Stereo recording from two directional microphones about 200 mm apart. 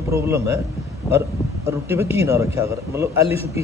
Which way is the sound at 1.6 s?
15° right (ahead or behind).